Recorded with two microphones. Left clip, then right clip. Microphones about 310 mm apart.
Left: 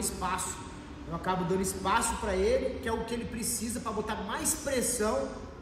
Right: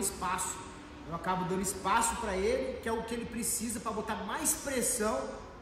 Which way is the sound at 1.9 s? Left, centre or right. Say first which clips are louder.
Left 1 dB; centre.